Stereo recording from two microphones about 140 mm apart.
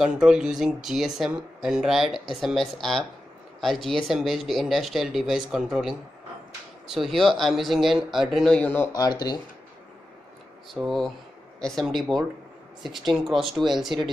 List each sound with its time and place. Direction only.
0.0 s speech: 5° right (ahead or behind)
8.9 s speech: 30° left (ahead or behind)
10.7 s speech: centre (ahead or behind)